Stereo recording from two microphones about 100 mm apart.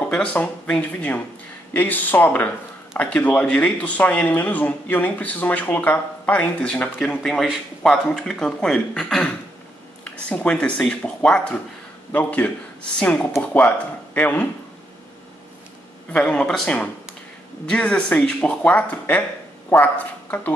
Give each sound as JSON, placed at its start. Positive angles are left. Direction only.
{"t": 0.1, "sound": "speech", "side_deg": 10}
{"t": 16.1, "sound": "speech", "side_deg": 10}